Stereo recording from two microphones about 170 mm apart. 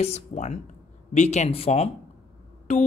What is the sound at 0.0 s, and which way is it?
Speech, 40° left (ahead or behind).